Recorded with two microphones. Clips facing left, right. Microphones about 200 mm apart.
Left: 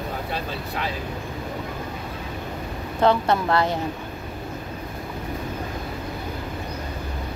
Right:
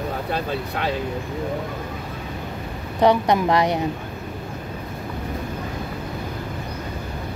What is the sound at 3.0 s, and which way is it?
Speech, 15° right (ahead or behind).